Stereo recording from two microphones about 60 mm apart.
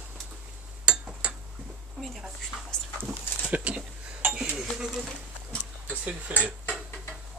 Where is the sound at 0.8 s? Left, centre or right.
Centre.